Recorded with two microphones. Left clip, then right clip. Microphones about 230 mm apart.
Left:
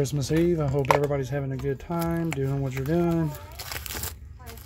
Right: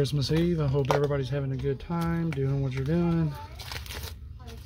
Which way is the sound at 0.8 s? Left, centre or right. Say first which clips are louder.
Left 4 dB; centre.